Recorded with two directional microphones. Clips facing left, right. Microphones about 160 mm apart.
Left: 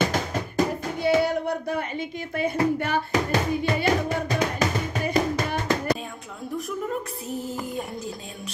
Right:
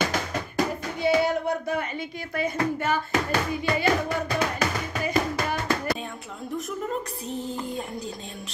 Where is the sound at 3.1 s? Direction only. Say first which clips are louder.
Left 2 dB; 40° left (ahead or behind).